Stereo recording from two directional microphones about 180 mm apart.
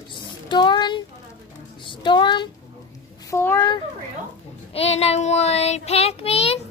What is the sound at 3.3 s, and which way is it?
Speech, 15° left (ahead or behind).